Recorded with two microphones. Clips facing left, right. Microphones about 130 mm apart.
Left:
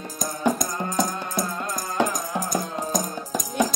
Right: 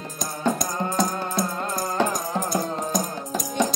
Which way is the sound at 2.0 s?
15° left (ahead or behind).